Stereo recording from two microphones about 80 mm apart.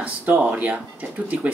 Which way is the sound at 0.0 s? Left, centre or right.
Centre.